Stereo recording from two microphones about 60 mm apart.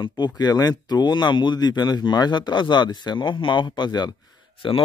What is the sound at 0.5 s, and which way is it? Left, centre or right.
Speech, left.